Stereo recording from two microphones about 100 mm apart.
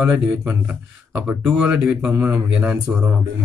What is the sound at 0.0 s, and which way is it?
Speech, 20° right (ahead or behind).